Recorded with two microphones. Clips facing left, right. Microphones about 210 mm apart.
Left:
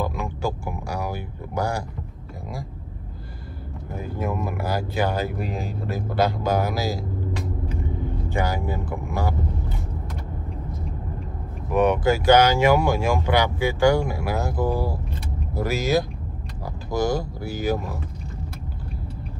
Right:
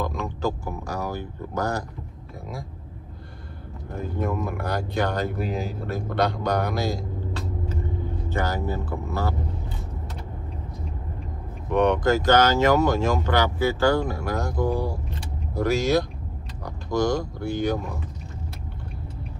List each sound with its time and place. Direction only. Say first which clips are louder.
0.0 s a sound: even; 10° left (ahead or behind)
3.9 s speech: right 1 dB; 5° left (ahead or behind)
7.3 s vehicle: left 1 dB; 15° left (ahead or behind)
8.3 s speech: even; 10° left (ahead or behind)
11.7 s speech: even; 5° left (ahead or behind)